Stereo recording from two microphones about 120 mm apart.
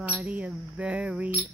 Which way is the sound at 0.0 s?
10° right (ahead or behind).